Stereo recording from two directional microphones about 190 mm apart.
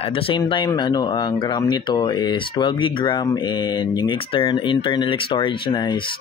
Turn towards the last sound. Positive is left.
turn(degrees=25)  # may be behind; listen again after turning